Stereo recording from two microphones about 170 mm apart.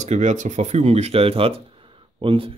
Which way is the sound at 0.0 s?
45° right (ahead or behind).